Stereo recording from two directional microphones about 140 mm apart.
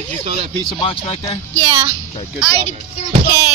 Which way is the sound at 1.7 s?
20° right (ahead or behind).